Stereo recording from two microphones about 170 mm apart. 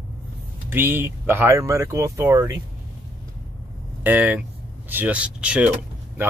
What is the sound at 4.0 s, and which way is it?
Speech, 10° right (ahead or behind).